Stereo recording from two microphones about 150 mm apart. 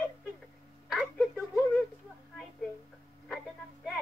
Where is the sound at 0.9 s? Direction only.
Centre (ahead or behind).